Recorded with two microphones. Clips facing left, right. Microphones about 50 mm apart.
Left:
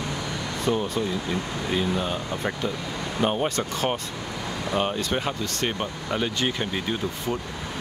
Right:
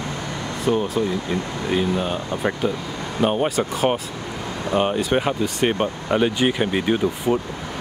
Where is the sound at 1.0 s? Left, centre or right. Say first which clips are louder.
Right 4 dB; right.